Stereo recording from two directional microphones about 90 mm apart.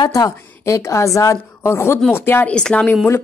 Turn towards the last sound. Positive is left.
turn(degrees=15)  # may be behind; listen again after turning